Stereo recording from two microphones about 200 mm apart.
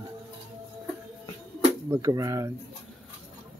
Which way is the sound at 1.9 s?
15° right (ahead or behind).